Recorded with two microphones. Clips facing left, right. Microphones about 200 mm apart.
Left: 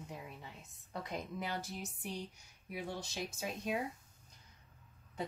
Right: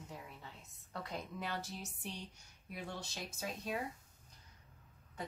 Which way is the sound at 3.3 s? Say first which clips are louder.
Left 2 dB; 15° left (ahead or behind).